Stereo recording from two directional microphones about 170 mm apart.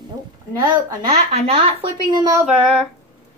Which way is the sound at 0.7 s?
35° right (ahead or behind).